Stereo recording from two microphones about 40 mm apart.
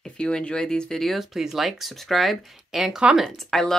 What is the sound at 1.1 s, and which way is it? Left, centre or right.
Speech, centre.